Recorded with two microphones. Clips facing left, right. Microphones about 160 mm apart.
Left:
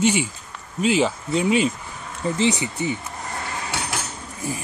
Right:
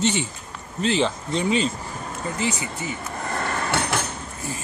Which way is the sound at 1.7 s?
45° right (ahead or behind).